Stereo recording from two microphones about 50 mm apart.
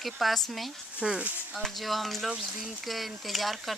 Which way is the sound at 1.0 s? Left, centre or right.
Centre.